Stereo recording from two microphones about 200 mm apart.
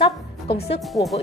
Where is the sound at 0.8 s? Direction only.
Centre (ahead or behind).